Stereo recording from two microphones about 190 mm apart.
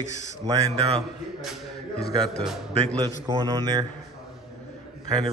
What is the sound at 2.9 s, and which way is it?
Speech, 20° right (ahead or behind).